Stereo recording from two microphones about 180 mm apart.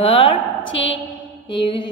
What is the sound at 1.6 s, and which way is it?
Speech, 30° left (ahead or behind).